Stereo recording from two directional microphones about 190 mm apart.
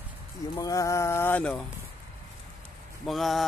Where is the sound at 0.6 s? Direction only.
15° left (ahead or behind).